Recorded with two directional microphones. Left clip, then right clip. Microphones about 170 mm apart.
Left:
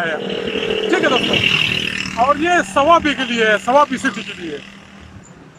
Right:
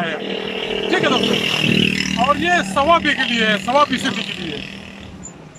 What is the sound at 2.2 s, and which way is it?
Speech, 10° left (ahead or behind).